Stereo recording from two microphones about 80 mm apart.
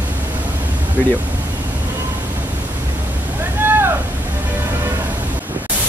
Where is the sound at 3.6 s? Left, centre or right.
Right.